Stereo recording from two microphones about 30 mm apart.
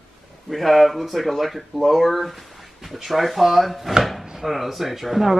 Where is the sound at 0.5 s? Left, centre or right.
Centre.